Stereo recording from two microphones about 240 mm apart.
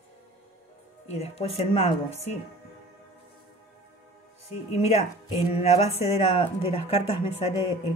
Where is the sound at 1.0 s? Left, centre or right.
Left.